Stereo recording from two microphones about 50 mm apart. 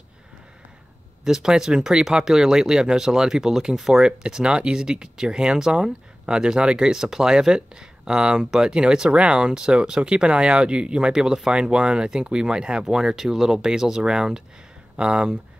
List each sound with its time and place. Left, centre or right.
1.2 s speech: centre